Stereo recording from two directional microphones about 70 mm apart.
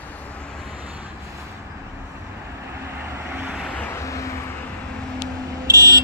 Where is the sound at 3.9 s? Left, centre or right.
Left.